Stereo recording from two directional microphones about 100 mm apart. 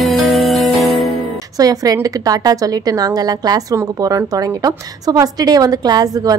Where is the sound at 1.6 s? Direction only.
40° right (ahead or behind).